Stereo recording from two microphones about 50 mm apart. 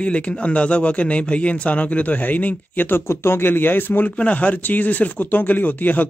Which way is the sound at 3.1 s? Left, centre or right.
Left.